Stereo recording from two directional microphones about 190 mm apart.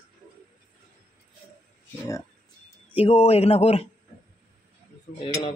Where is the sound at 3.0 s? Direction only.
30° left (ahead or behind).